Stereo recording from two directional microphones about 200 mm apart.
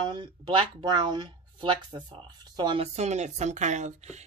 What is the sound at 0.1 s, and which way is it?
Speech, 25° right (ahead or behind).